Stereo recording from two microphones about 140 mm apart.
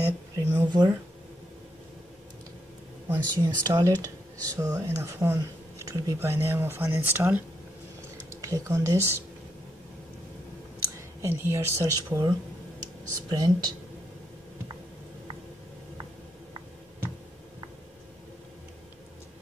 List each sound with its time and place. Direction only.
0.0 s speech: 25° right (ahead or behind)
3.1 s speech: 30° right (ahead or behind)
11.1 s speech: 20° right (ahead or behind)